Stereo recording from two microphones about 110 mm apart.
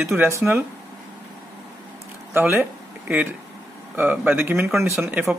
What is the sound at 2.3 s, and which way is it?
Speech, 15° right (ahead or behind).